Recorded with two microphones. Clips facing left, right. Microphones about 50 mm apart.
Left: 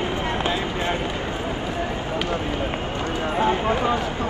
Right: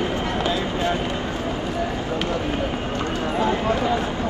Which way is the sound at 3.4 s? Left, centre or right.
Left.